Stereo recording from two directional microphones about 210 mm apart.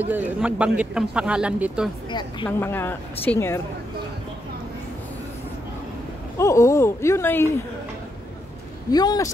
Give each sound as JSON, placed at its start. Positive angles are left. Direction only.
{"t": 0.0, "sound": "speech", "side_deg": -10}
{"t": 2.4, "sound": "speech", "side_deg": 10}
{"t": 6.3, "sound": "speech", "side_deg": 15}
{"t": 8.9, "sound": "speech", "side_deg": 20}